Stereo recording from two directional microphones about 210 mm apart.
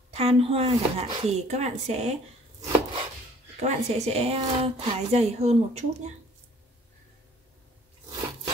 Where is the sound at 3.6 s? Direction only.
30° right (ahead or behind).